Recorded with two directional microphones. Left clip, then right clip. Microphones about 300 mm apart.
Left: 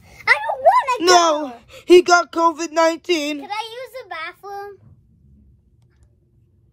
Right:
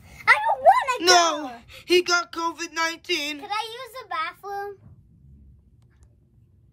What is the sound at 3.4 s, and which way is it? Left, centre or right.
Child singing, left.